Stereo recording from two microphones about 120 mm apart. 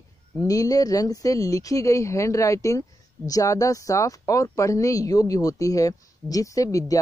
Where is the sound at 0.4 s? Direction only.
30° left (ahead or behind).